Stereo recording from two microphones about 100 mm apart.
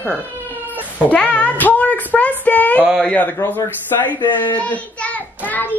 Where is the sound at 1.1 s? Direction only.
15° left (ahead or behind).